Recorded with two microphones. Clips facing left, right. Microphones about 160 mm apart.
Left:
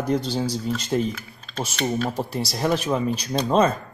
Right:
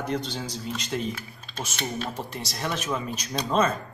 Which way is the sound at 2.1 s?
35° left (ahead or behind).